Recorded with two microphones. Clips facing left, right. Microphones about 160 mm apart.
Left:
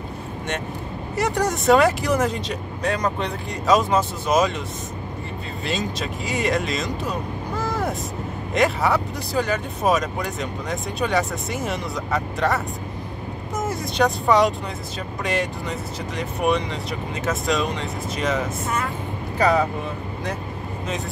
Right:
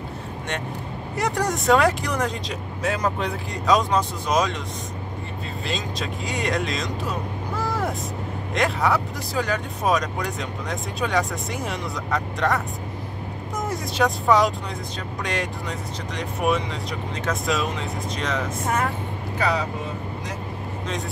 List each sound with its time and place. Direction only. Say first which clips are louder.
1.1 s speech: left 2 dB; centre (ahead or behind)
5.7 s speech: left 3 dB; centre (ahead or behind)
8.5 s speech: left 2 dB; centre (ahead or behind)
16.2 s speech: left 1 dB; centre (ahead or behind)
19.3 s speech: left 5 dB; 45° left (ahead or behind)